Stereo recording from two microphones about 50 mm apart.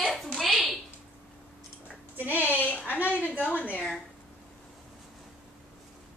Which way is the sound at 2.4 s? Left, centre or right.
Left.